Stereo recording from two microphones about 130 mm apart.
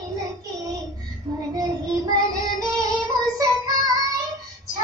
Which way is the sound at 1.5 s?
30° right (ahead or behind).